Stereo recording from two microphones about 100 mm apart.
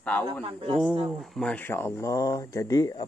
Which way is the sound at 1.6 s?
20° left (ahead or behind).